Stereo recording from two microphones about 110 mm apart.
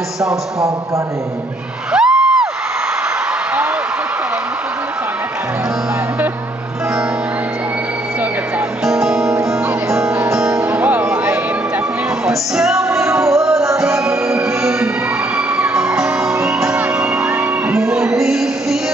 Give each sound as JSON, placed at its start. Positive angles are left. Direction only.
{"t": 0.2, "sound": "speech", "side_deg": -30}
{"t": 1.9, "sound": "music", "side_deg": -5}
{"t": 8.8, "sound": "music", "side_deg": -5}
{"t": 9.3, "sound": "music", "side_deg": -25}
{"t": 10.6, "sound": "music", "side_deg": -15}
{"t": 13.0, "sound": "music", "side_deg": -25}
{"t": 13.3, "sound": "music", "side_deg": 0}